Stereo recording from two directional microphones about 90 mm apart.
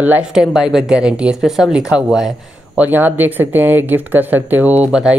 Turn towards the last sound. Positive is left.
turn(degrees=-15)  # may be behind; listen again after turning